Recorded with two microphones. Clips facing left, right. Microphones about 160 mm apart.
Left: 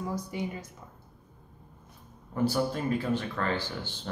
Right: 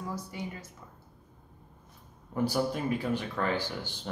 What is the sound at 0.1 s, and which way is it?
Speech, 15° left (ahead or behind).